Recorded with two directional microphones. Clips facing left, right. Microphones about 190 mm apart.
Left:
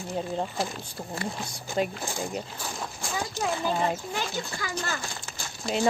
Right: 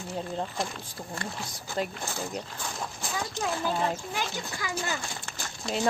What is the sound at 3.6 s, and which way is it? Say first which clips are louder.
Speech: left 2 dB; 5° left (ahead or behind).